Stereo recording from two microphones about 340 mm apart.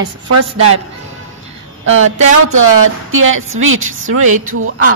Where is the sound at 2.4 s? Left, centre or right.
Right.